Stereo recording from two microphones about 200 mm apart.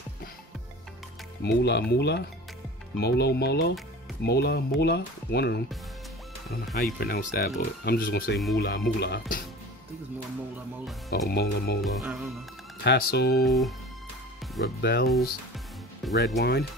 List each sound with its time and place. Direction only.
1.4 s speech: 55° left (ahead or behind)
6.8 s speech: 45° left (ahead or behind)
11.1 s speech: 55° left (ahead or behind)
11.8 s music: centre (ahead or behind)
12.8 s speech: 55° left (ahead or behind)
13.5 s music: centre (ahead or behind)
14.8 s speech: 55° left (ahead or behind)
16.0 s speech: centre (ahead or behind)
16.3 s speech: 55° left (ahead or behind)